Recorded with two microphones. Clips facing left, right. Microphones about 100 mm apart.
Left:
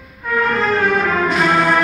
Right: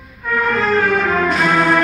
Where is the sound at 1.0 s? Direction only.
Centre (ahead or behind).